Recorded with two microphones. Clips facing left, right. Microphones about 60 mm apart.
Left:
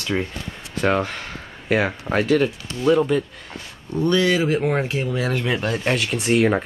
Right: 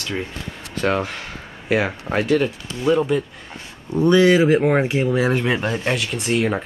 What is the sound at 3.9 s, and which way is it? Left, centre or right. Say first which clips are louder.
Speech: right 5 dB; centre.